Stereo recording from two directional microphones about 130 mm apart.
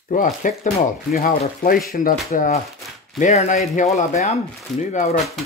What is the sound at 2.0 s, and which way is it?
Speech, 90° left.